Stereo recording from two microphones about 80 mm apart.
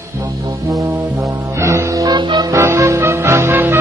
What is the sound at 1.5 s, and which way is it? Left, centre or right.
Music, right.